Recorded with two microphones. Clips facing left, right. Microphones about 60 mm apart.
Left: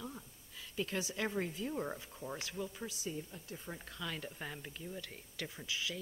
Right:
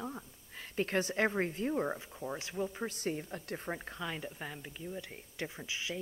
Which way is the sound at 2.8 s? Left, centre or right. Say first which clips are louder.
Right 6 dB; right.